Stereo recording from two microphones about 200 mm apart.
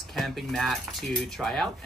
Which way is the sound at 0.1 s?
Centre (ahead or behind).